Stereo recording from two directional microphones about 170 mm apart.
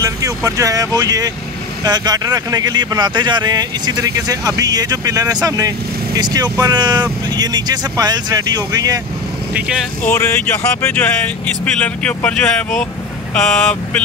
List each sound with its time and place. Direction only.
0.0 s speech: 20° right (ahead or behind)
9.5 s speech: 5° right (ahead or behind)
10.0 s speech: 15° left (ahead or behind)